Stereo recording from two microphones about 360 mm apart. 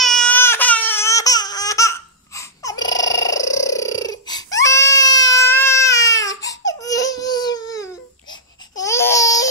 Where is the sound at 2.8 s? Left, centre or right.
Centre.